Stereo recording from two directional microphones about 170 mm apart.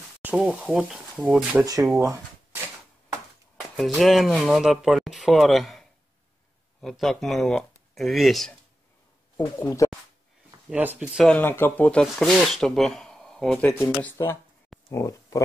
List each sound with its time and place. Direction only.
0.2 s speech: 10° right (ahead or behind)
3.7 s speech: centre (ahead or behind)
9.4 s speech: 20° left (ahead or behind)
10.7 s speech: 10° right (ahead or behind)
11.2 s speech: 10° left (ahead or behind)